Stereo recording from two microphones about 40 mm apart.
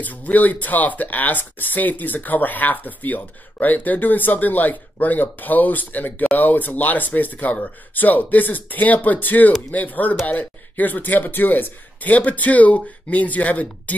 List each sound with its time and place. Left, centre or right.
0.0 s speech: left
12.1 s speech: left